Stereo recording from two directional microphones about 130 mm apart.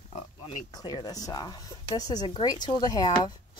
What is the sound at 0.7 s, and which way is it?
Speech, 30° left (ahead or behind).